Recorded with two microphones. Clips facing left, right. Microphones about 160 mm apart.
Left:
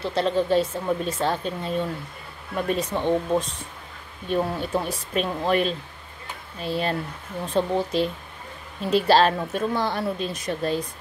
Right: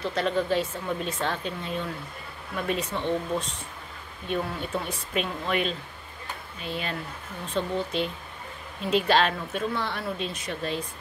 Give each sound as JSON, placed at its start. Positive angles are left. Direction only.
{"t": 0.0, "sound": "speech", "side_deg": 30}
{"t": 4.3, "sound": "speech", "side_deg": 35}